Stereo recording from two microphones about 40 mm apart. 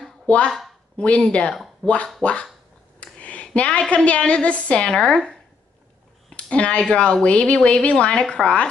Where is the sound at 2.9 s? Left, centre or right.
Left.